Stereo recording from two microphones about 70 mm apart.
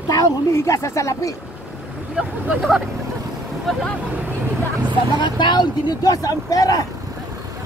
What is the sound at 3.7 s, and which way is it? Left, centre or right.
Speech, centre.